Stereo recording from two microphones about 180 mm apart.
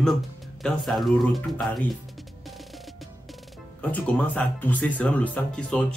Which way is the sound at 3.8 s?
10° left (ahead or behind).